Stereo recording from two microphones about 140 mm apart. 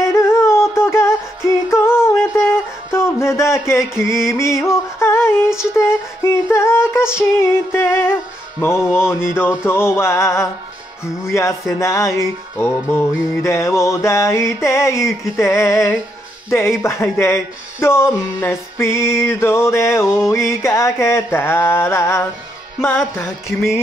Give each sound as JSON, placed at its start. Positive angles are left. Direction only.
{"t": 0.0, "sound": "music", "side_deg": 20}
{"t": 8.8, "sound": "speech", "side_deg": 15}
{"t": 9.7, "sound": "music", "side_deg": 20}
{"t": 16.4, "sound": "speech", "side_deg": 20}
{"t": 20.2, "sound": "music", "side_deg": 20}
{"t": 22.8, "sound": "speech", "side_deg": 15}
{"t": 23.2, "sound": "music", "side_deg": 0}